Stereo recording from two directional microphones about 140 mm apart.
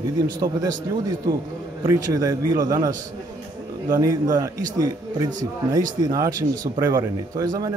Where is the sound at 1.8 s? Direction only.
25° right (ahead or behind).